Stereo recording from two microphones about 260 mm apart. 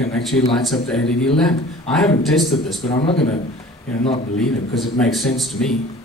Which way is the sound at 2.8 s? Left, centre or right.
Left.